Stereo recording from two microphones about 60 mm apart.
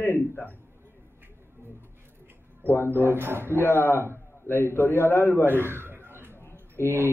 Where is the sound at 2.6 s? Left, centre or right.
Left.